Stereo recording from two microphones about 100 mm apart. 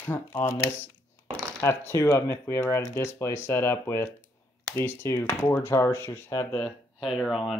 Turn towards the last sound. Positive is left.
turn(degrees=0)  # may be behind; listen again after turning